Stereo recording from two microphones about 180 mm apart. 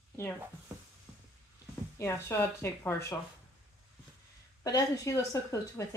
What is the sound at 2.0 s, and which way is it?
Speech, 15° left (ahead or behind).